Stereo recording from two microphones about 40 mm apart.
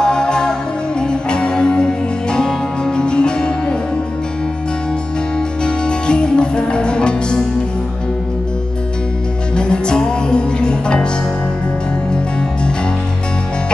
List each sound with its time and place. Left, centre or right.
0.0 s music: centre
5.6 s music: left
9.6 s music: left